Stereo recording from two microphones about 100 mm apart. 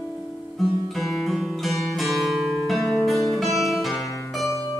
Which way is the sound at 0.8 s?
Centre (ahead or behind).